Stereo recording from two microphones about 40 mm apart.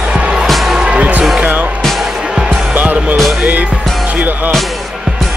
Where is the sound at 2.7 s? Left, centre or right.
Right.